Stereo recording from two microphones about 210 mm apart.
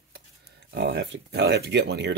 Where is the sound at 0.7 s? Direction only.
60° right (ahead or behind).